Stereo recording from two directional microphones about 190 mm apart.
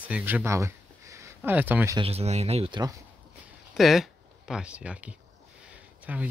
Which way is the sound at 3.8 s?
Centre (ahead or behind).